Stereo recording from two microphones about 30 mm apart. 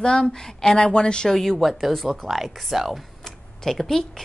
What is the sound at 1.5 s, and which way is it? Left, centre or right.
Speech, centre.